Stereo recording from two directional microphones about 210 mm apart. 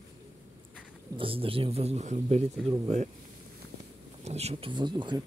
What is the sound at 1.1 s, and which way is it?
Speech, 25° right (ahead or behind).